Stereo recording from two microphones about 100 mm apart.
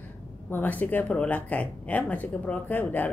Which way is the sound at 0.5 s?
15° left (ahead or behind).